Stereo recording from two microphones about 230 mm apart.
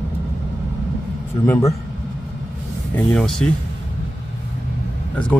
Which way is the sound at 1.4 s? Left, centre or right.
Centre.